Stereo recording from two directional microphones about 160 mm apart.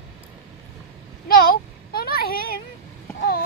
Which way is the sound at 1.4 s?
75° left (ahead or behind).